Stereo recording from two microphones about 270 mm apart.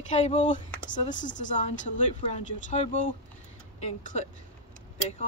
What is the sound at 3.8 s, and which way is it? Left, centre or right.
Speech, left.